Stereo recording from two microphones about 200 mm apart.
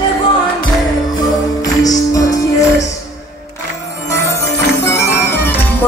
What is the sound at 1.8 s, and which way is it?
Music, 15° left (ahead or behind).